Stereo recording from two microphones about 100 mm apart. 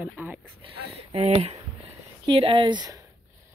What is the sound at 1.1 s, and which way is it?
Speech, 80° right.